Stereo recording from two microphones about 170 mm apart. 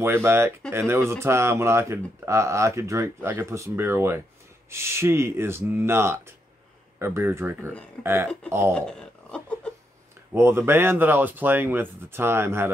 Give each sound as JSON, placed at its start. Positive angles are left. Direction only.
{"t": 0.0, "sound": "speech", "side_deg": -15}
{"t": 8.7, "sound": "speech", "side_deg": 5}
{"t": 10.3, "sound": "speech", "side_deg": -15}